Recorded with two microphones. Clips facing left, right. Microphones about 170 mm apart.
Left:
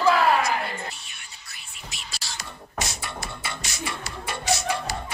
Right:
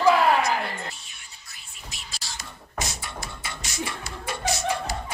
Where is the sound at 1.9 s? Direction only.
70° left (ahead or behind).